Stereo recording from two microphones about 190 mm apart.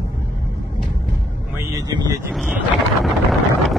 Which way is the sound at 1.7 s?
20° right (ahead or behind).